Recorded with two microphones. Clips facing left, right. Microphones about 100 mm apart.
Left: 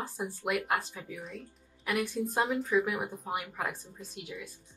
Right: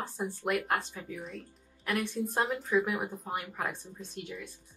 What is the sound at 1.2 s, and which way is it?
Speech, centre (ahead or behind).